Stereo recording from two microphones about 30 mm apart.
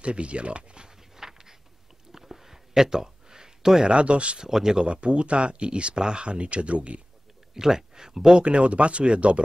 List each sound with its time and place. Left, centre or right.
0.0 s speech: right
1.1 s a sound: centre
3.8 s speech: right
4.5 s speech: centre
4.7 s speech: right
5.0 s speech: right
7.5 s speech: centre
8.4 s speech: right